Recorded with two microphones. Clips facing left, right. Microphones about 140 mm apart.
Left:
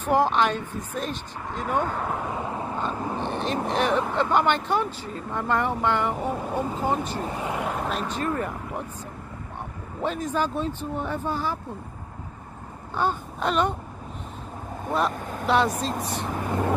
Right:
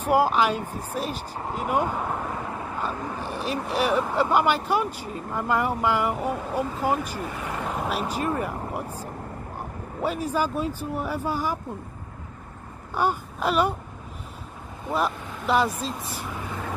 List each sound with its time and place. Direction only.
0.1 s speech: 5° right (ahead or behind)
3.3 s vehicle: 5° right (ahead or behind)
3.6 s speech: 5° right (ahead or behind)
7.2 s speech: 30° left (ahead or behind)
7.5 s speech: 5° left (ahead or behind)
7.8 s speech: 10° right (ahead or behind)
10.0 s speech: 10° right (ahead or behind)
12.9 s speech: 10° right (ahead or behind)
14.9 s speech: centre (ahead or behind)
16.4 s vehicle: 45° left (ahead or behind)